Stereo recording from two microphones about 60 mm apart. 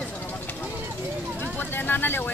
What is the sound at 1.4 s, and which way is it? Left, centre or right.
Speech, left.